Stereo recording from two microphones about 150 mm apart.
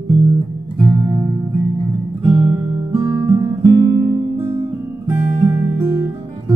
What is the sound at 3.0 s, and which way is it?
Guitar, 20° right (ahead or behind).